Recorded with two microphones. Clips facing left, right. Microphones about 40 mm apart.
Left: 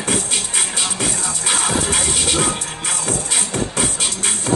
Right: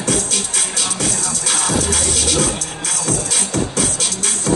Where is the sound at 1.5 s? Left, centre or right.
Left.